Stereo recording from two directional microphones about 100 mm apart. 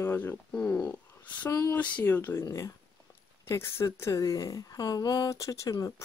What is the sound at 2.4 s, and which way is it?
A woman's voice, 30° left (ahead or behind).